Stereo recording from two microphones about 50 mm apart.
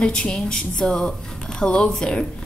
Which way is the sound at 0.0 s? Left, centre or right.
Centre.